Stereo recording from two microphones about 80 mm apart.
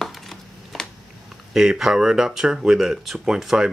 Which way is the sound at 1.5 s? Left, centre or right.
Centre.